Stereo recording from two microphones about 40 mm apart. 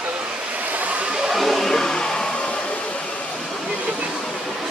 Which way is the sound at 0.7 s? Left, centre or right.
Right.